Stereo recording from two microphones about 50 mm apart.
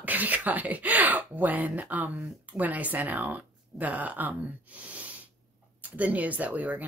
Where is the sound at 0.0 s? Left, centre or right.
Right.